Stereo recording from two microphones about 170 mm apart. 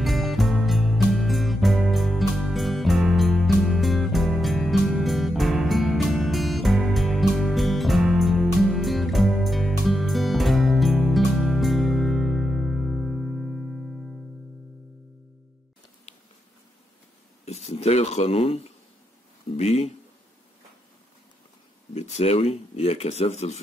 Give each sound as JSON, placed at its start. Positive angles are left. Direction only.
{"t": 0.0, "sound": "music", "side_deg": 0}
{"t": 17.5, "sound": "a sound", "side_deg": 40}
{"t": 19.5, "sound": "speech", "side_deg": 40}
{"t": 21.9, "sound": "speech", "side_deg": 40}